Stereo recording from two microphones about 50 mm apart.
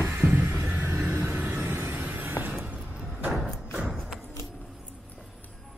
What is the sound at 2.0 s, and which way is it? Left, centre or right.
Music, right.